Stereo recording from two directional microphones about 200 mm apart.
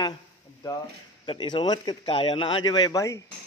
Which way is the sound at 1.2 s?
25° left (ahead or behind).